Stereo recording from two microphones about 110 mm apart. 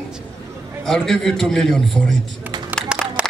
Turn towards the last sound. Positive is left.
turn(degrees=-10)  # may be behind; listen again after turning